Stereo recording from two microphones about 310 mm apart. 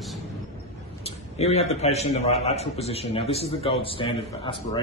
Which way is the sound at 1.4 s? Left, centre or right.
Left.